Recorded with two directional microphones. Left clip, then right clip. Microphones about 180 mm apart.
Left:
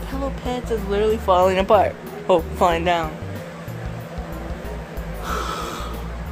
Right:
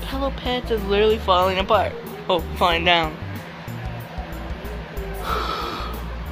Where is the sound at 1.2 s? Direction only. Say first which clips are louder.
Left 2 dB; 50° left (ahead or behind).